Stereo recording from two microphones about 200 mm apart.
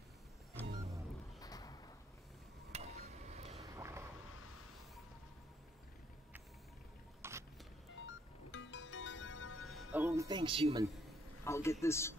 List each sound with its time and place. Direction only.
0.7 s music: 35° right (ahead or behind)
1.4 s a sound: 20° left (ahead or behind)
2.7 s a sound: 30° right (ahead or behind)
3.7 s a sound: 15° right (ahead or behind)
7.2 s vehicle: 15° right (ahead or behind)
8.5 s music: 70° left (ahead or behind)
9.6 s music: centre (ahead or behind)
10.2 s speech: 25° right (ahead or behind)
11.4 s a man's voice: 15° left (ahead or behind)